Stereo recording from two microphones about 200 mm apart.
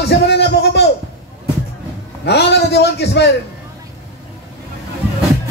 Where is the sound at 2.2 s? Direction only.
55° left (ahead or behind).